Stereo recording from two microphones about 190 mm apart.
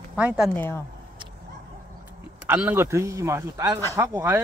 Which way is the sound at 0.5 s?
10° left (ahead or behind).